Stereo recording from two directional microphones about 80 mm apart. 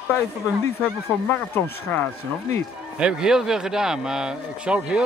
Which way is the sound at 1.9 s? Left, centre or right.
Left.